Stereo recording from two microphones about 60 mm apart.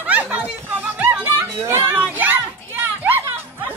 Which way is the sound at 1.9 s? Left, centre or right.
Right.